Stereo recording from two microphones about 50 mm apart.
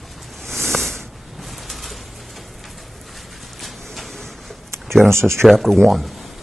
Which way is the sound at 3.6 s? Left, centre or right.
Centre.